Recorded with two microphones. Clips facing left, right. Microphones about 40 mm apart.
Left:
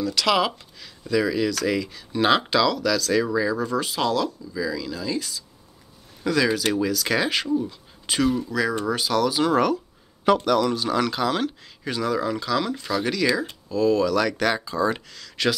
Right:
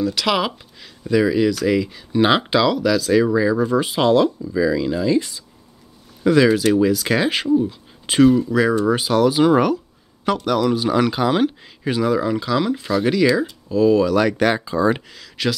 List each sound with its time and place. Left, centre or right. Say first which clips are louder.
0.0 s speech: right 2 dB; centre
10.2 s speech: right 1 dB; centre